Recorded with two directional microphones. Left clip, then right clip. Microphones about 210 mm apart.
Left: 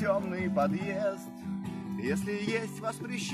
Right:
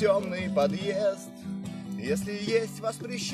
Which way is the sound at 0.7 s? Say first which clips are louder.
Right 5 dB; 55° right (ahead or behind).